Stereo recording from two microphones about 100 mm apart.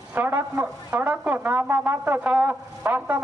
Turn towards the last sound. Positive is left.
turn(degrees=-20)  # may be behind; listen again after turning